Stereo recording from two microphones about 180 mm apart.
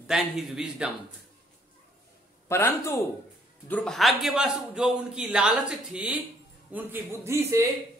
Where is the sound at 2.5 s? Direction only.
15° left (ahead or behind).